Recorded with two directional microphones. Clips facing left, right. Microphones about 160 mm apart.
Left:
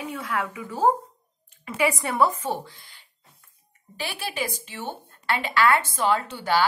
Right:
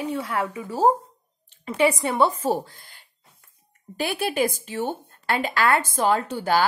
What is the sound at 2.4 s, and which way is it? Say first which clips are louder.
Speech: right 5 dB; 40° right (ahead or behind).